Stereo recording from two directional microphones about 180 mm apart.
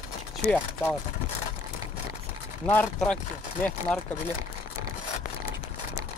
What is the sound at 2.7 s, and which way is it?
Speech, 10° left (ahead or behind).